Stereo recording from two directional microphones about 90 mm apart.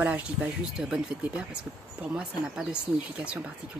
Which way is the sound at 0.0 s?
15° right (ahead or behind).